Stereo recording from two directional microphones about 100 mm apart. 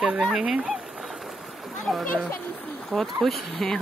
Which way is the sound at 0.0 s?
5° right (ahead or behind).